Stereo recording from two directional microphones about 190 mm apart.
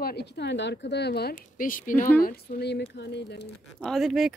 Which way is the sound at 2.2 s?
55° left (ahead or behind).